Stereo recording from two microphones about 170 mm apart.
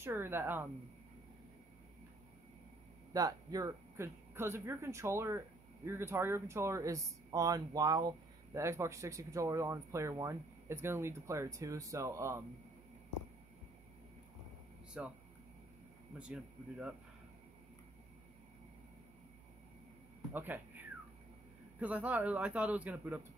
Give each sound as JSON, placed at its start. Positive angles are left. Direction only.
{"t": 0.0, "sound": "speech", "side_deg": -15}
{"t": 3.1, "sound": "speech", "side_deg": -20}
{"t": 15.0, "sound": "speech", "side_deg": 0}
{"t": 20.3, "sound": "speech", "side_deg": -10}